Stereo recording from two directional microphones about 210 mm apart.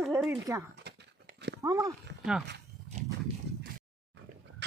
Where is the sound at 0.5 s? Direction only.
15° right (ahead or behind).